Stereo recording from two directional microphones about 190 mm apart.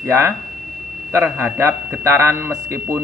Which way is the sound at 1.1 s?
15° right (ahead or behind).